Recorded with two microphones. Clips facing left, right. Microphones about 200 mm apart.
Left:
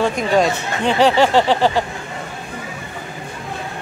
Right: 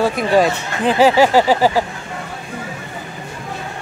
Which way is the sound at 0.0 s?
5° right (ahead or behind).